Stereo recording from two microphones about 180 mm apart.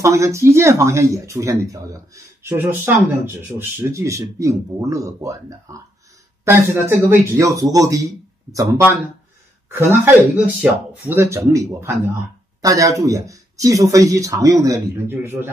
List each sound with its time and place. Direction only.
0.0 s speech: 15° right (ahead or behind)